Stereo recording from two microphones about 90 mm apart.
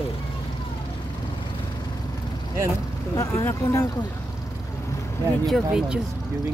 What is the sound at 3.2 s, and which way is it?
Speech, 30° left (ahead or behind).